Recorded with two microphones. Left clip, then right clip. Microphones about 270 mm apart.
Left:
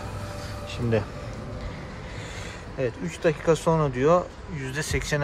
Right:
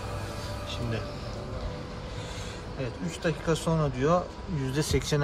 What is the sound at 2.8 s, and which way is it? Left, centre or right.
Speech, centre.